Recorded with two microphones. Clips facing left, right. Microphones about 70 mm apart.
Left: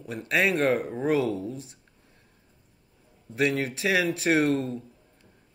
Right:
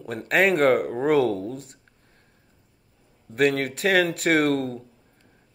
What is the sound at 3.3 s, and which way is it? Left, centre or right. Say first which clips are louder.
Speech: right 4 dB; right.